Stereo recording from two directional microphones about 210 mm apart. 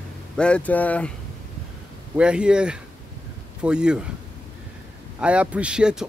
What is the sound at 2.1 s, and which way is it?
Speech, 5° right (ahead or behind).